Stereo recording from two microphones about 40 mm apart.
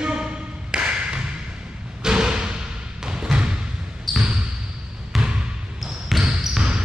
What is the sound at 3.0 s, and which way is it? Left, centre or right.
Basketball bounce, centre.